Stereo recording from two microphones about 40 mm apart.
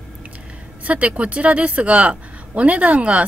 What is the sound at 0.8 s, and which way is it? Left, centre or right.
A woman's voice, right.